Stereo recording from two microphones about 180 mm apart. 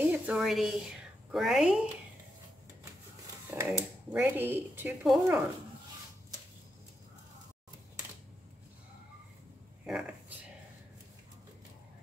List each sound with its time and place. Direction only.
0.0 s speech: 5° right (ahead or behind)
3.4 s speech: 10° right (ahead or behind)
9.8 s speech: 5° right (ahead or behind)